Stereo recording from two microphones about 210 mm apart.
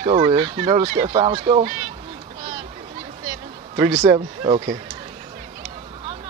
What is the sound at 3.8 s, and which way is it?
Speech, 15° right (ahead or behind).